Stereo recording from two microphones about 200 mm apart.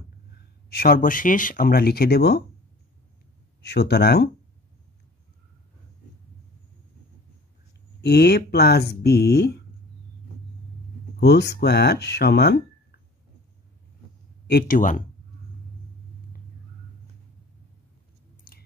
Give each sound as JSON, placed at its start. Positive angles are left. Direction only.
{"t": 0.3, "sound": "speech", "side_deg": 50}
{"t": 3.6, "sound": "speech", "side_deg": 55}
{"t": 8.0, "sound": "speech", "side_deg": 55}
{"t": 11.1, "sound": "speech", "side_deg": 55}
{"t": 14.5, "sound": "speech", "side_deg": 40}